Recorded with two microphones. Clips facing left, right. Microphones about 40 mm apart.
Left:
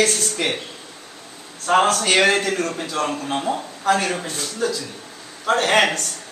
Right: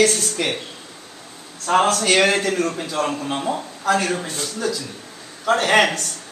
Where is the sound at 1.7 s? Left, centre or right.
Centre.